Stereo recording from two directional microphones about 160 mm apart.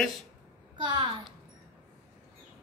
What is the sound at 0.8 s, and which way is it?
Speech, 30° right (ahead or behind).